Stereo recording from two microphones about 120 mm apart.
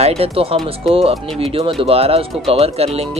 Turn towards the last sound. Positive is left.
turn(degrees=-60)  # may be behind; listen again after turning